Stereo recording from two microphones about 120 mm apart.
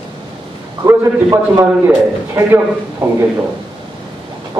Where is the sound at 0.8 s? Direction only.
20° right (ahead or behind).